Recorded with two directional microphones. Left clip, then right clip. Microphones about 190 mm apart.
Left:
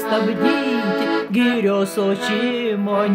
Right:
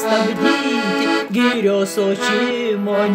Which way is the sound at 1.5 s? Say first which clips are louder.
Right 2 dB; 10° left (ahead or behind).